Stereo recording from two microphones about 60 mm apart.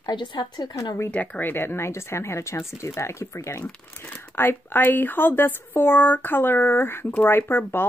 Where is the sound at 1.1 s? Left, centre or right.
Left.